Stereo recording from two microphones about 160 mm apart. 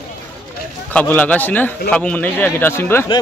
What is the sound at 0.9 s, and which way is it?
Speech, 10° left (ahead or behind).